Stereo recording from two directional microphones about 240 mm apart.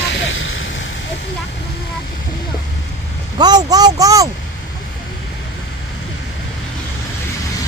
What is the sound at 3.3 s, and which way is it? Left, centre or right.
Speech, centre.